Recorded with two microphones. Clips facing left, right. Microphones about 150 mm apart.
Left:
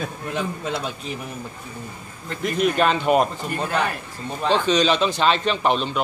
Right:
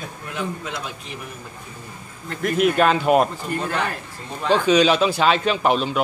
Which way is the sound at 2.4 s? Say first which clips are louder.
Right 2 dB; 5° right (ahead or behind).